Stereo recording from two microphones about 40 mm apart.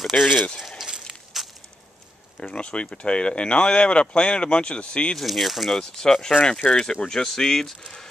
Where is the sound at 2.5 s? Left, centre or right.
Left.